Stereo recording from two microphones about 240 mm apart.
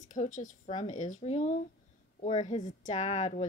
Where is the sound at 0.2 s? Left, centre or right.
Left.